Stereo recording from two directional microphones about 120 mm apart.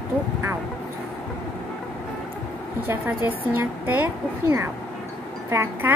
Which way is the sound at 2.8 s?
15° right (ahead or behind).